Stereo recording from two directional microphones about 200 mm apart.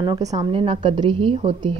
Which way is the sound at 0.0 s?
20° right (ahead or behind).